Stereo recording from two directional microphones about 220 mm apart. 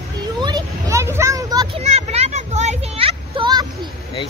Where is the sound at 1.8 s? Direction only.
30° right (ahead or behind).